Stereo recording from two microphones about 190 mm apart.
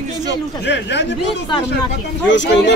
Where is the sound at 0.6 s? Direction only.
65° left (ahead or behind).